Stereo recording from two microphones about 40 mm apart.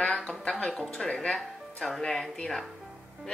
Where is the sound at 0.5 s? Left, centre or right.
Left.